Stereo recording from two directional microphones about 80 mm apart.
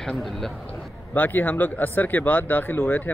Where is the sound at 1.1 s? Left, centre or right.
Left.